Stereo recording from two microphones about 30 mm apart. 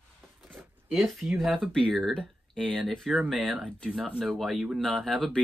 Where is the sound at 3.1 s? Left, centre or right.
Centre.